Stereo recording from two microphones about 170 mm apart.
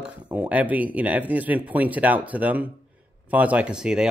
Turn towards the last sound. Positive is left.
turn(degrees=-5)  # may be behind; listen again after turning